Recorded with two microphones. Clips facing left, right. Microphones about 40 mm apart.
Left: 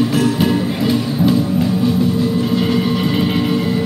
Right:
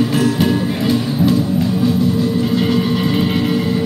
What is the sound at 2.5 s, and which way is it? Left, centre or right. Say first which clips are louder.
Music: even; centre.